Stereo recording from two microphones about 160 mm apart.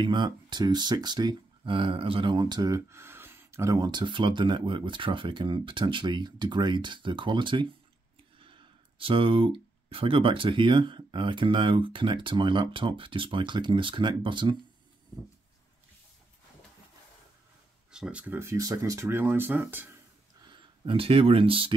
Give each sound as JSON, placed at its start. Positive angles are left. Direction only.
{"t": 0.0, "sound": "speech", "side_deg": -30}
{"t": 17.9, "sound": "speech", "side_deg": -5}
{"t": 20.4, "sound": "speech", "side_deg": -30}